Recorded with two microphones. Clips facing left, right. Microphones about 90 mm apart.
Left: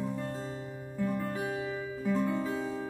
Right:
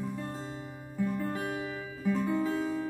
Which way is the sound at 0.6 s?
10° right (ahead or behind).